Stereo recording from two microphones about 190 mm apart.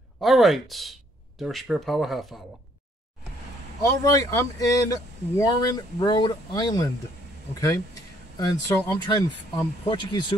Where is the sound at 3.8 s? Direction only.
15° left (ahead or behind).